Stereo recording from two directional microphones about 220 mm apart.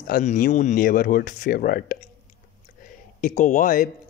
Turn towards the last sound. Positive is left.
turn(degrees=35)  # may be behind; listen again after turning